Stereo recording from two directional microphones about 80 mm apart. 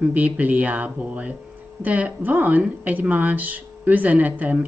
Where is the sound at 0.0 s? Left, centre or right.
Centre.